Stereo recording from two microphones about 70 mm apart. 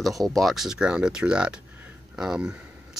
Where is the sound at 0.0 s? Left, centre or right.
Centre.